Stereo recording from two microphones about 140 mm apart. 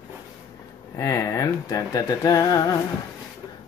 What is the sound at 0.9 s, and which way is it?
Speech, 25° left (ahead or behind).